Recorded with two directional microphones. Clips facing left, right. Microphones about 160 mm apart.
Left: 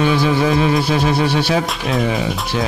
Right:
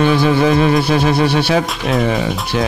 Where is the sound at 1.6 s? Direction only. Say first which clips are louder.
Right 2 dB; centre (ahead or behind).